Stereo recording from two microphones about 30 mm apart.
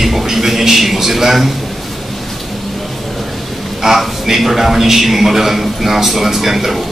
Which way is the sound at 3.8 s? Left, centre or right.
Centre.